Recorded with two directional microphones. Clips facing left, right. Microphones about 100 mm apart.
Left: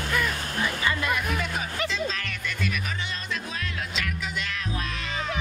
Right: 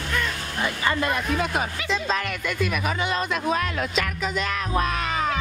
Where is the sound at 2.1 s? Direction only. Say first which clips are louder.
Right 7 dB; 50° right (ahead or behind).